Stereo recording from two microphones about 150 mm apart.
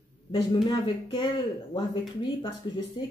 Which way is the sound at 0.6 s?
30° left (ahead or behind).